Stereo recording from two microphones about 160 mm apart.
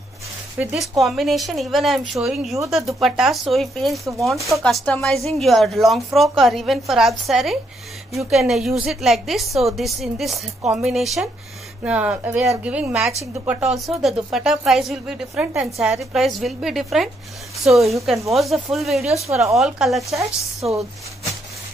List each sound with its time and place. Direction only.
0.6 s speech: 5° right (ahead or behind)
20.6 s speech: 40° right (ahead or behind)